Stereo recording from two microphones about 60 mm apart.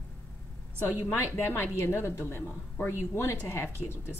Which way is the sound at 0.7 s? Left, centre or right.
Left.